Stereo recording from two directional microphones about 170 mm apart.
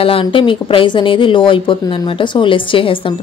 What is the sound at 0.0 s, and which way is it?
Speech, 30° left (ahead or behind).